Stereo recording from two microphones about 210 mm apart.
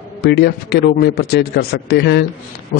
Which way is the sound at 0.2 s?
50° left (ahead or behind).